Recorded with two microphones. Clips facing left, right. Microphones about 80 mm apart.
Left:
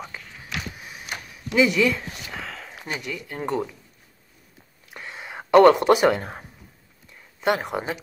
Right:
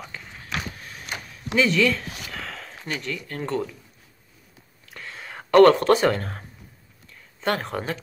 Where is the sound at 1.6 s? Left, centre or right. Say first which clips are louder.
Left 1 dB; centre.